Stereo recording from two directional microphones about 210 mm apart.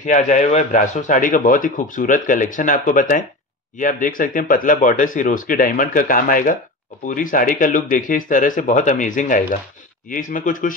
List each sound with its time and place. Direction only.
0.0 s speech: 35° left (ahead or behind)